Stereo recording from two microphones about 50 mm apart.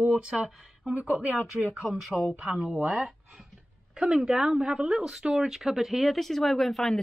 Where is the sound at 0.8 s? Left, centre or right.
Right.